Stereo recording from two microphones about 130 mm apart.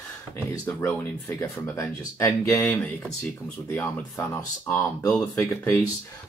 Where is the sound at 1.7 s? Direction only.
20° left (ahead or behind).